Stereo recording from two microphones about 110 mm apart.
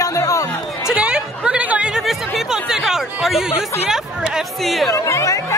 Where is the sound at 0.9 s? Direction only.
10° right (ahead or behind).